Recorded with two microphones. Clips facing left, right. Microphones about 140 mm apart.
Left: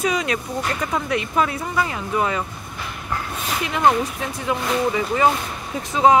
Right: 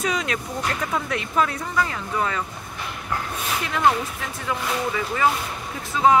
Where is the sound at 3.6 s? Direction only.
20° left (ahead or behind).